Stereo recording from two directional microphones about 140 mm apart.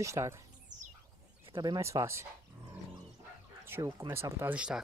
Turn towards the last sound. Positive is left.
turn(degrees=-10)  # may be behind; listen again after turning